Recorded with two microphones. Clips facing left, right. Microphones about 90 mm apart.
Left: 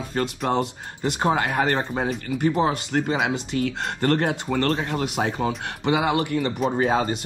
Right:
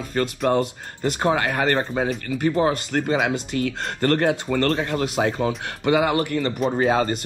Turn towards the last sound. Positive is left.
turn(degrees=5)  # may be behind; listen again after turning